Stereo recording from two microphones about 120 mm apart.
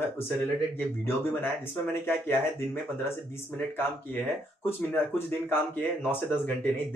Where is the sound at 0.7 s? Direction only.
15° left (ahead or behind).